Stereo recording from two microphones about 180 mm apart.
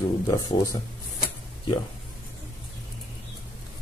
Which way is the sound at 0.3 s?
20° left (ahead or behind).